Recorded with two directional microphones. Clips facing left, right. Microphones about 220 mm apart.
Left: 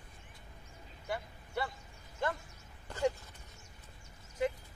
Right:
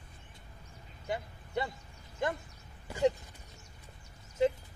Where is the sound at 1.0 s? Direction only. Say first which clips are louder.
Right 3 dB; 20° right (ahead or behind).